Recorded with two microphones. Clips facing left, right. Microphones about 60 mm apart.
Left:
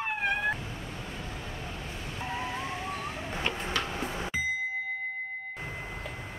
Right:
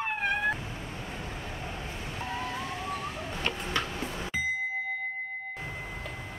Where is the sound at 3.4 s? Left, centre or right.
Centre.